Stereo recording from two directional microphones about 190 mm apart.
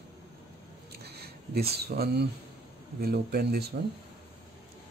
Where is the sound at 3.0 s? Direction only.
55° right (ahead or behind).